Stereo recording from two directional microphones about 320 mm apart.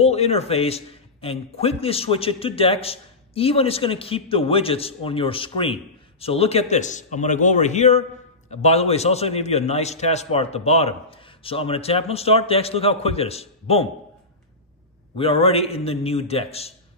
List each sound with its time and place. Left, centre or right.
0.0 s a man's voice: centre
15.1 s a man's voice: centre